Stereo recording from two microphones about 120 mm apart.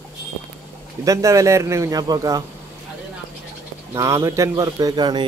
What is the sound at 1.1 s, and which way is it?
A man's voice, 25° right (ahead or behind).